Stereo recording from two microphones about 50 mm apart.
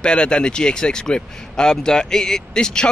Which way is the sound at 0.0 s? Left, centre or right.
Centre.